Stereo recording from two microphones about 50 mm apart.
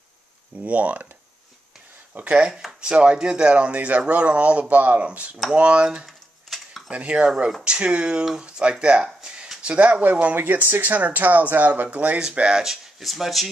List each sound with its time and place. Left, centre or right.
0.7 s speech: right
2.1 s speech: right
6.0 s a sound: centre
6.9 s speech: right
10.3 s speech: right; by 12.6 s centre
12.6 s speech: centre